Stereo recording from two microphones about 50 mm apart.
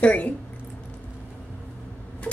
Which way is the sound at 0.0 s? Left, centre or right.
Left.